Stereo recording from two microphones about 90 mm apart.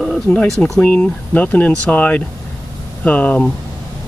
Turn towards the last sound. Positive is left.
turn(degrees=15)  # may be behind; listen again after turning